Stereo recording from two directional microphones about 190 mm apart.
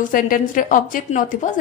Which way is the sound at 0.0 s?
45° left (ahead or behind).